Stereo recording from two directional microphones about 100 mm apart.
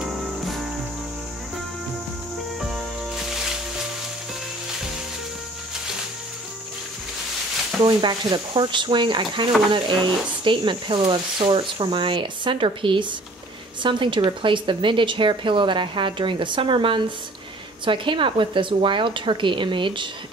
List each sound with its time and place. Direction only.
0.0 s cricket: centre (ahead or behind)
2.7 s music: 5° right (ahead or behind)
7.8 s speech: 45° right (ahead or behind)